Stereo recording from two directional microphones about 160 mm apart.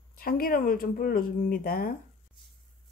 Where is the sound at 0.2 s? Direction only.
65° left (ahead or behind).